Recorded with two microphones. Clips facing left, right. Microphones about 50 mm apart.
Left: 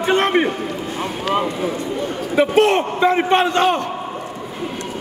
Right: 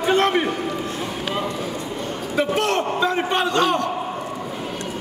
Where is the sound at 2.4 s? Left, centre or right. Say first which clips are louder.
Left 6 dB; left.